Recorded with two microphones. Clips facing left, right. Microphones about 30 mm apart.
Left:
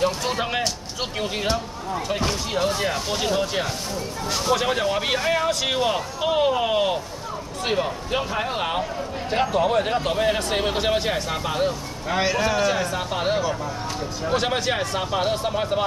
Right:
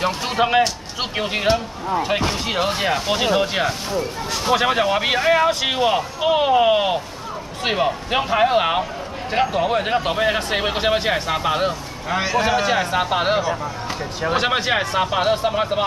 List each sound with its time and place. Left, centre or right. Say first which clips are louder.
0.0 s speech: right 3 dB; right
7.6 s speech: right 4 dB; right
9.3 s speech: right 2 dB; centre